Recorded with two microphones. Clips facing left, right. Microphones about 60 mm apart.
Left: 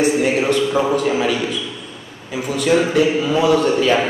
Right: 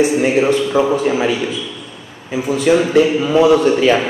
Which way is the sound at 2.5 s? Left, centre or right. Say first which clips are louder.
Right 3 dB; centre.